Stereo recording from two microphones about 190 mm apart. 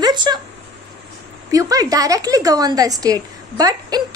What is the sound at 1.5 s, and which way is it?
A woman's voice, 20° right (ahead or behind).